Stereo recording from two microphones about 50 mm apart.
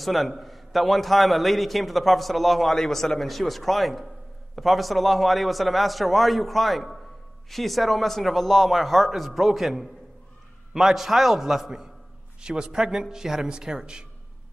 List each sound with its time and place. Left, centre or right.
0.0 s a man's voice: centre